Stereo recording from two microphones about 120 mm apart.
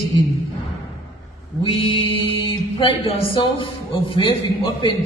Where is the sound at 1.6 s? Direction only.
45° left (ahead or behind).